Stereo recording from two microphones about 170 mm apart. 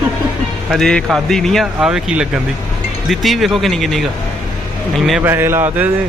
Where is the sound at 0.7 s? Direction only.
5° left (ahead or behind).